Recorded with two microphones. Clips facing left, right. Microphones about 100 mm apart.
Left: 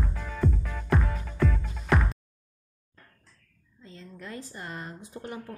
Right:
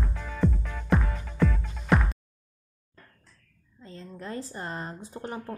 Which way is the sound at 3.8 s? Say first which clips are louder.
Right 3 dB; 40° right (ahead or behind).